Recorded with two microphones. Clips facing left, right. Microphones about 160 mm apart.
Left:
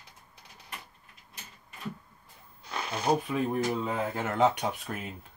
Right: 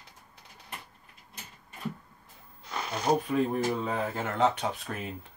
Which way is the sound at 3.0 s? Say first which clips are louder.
Right 2 dB; 10° left (ahead or behind).